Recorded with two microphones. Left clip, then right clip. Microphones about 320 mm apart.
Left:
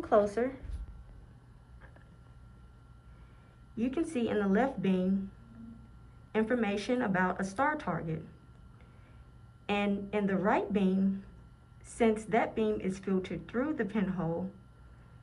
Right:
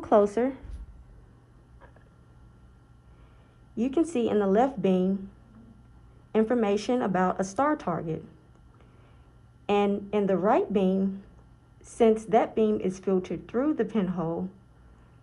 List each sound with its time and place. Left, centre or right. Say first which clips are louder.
0.0 s a woman's voice: right 5 dB; right
3.7 s speech: right 7 dB; centre
6.3 s speech: right 6 dB; centre
9.7 s speech: right 7 dB; centre
12.3 s speech: right 6 dB; centre